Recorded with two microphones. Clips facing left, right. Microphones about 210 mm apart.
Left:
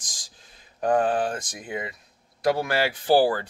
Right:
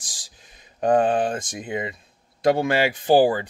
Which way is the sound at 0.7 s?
20° right (ahead or behind).